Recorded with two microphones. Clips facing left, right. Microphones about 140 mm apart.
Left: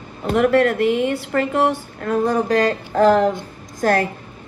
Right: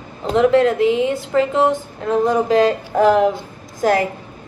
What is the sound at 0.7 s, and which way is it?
Speech, 55° left (ahead or behind).